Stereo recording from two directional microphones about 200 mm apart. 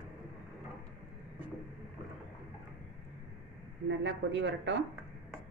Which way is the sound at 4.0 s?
60° right (ahead or behind).